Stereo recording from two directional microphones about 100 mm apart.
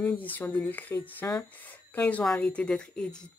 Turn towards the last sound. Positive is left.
turn(degrees=10)  # may be behind; listen again after turning